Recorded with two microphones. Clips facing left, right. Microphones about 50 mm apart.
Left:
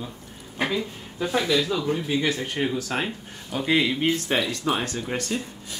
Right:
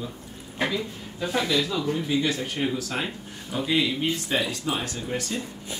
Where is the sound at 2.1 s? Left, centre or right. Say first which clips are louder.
Even; left.